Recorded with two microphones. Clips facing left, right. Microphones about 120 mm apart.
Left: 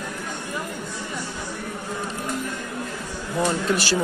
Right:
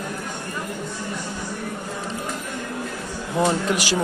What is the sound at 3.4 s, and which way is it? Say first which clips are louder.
Speech: right 1 dB; 15° right (ahead or behind).